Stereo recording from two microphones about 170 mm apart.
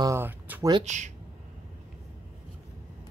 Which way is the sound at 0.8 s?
45° right (ahead or behind).